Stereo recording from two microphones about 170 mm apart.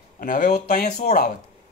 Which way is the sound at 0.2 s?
50° left (ahead or behind).